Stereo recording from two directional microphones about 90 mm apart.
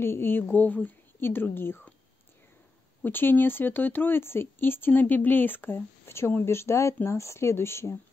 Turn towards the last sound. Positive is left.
turn(degrees=30)  # may be behind; listen again after turning